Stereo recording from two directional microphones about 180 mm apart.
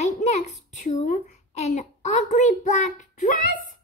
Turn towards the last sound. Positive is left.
turn(degrees=45)  # may be behind; listen again after turning